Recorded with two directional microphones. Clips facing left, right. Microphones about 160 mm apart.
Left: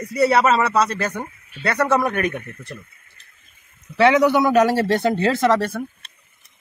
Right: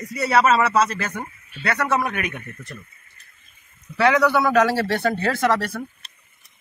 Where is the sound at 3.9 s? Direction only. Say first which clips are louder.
Left 3 dB; 20° left (ahead or behind).